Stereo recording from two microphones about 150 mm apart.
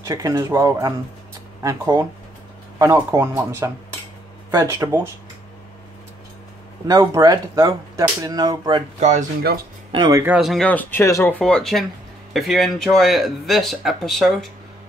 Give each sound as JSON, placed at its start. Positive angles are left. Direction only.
{"t": 0.0, "sound": "speech", "side_deg": -25}
{"t": 6.9, "sound": "speech", "side_deg": -30}
{"t": 9.9, "sound": "speech", "side_deg": -25}
{"t": 10.2, "sound": "speech", "side_deg": -10}
{"t": 10.5, "sound": "speech", "side_deg": 10}
{"t": 11.3, "sound": "speech", "side_deg": 5}